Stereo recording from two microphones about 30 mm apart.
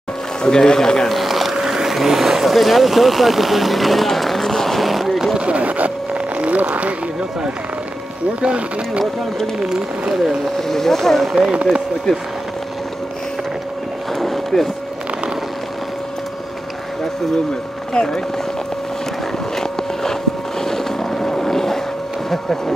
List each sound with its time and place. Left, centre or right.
0.4 s speech: left
1.0 s vehicle: centre
5.4 s vehicle: right
8.4 s speech: right
10.6 s speech: centre
11.5 s speech: right
12.1 s speech: centre
14.1 s boat: centre
17.9 s speech: left
19.5 s vehicle: centre